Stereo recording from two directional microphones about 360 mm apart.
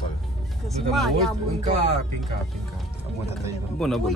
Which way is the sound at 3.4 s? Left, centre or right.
Centre.